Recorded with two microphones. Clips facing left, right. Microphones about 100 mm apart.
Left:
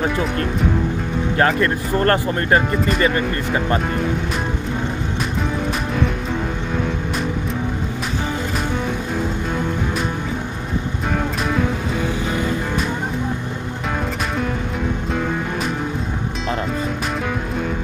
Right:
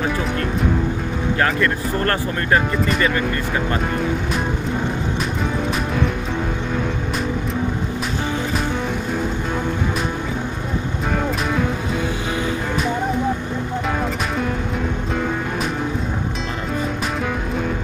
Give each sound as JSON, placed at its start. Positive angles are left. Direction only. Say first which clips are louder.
{"t": 1.4, "sound": "speech", "louder": "left 3 dB", "side_deg": 30}